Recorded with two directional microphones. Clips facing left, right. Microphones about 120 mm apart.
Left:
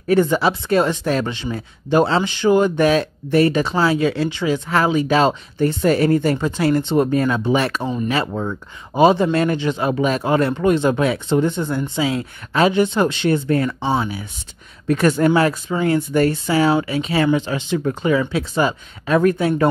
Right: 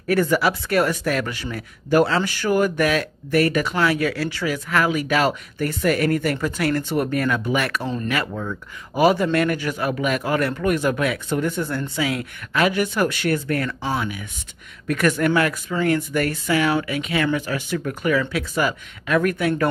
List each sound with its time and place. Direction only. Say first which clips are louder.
0.1 s speech: left 3 dB; 25° left (ahead or behind)